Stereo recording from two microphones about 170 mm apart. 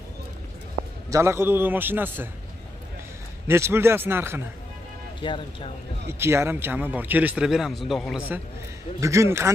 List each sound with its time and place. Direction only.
1.1 s a man's voice: 15° right (ahead or behind)
3.4 s a man's voice: 15° right (ahead or behind)
5.2 s speech: 30° left (ahead or behind)
6.1 s a man's voice: 15° right (ahead or behind)
9.0 s a man's voice: 15° right (ahead or behind)